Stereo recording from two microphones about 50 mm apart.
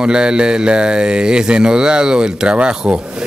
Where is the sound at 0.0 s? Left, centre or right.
Centre.